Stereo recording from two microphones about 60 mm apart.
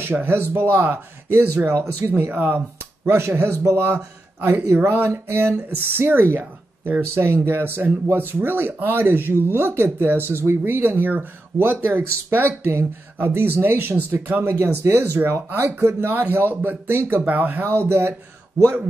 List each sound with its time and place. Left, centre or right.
0.0 s speech: right
3.1 s speech: right
4.4 s a woman's voice: right
14.4 s speech: right
16.1 s speech: right
17.6 s speech: right